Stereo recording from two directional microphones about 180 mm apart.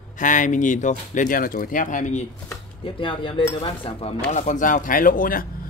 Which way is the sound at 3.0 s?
25° left (ahead or behind).